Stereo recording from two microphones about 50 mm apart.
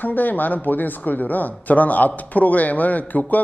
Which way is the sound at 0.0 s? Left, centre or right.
Left.